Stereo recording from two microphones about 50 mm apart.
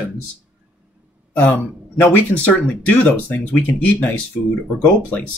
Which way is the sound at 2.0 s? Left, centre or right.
Left.